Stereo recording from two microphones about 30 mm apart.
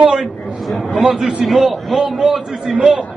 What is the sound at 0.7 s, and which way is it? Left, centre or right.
A man's voice, centre.